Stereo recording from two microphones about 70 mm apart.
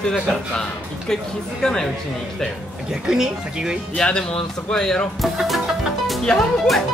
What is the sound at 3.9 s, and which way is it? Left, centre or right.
Speech, centre.